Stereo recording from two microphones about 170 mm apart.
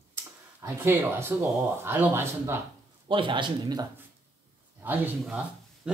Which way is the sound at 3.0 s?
30° right (ahead or behind).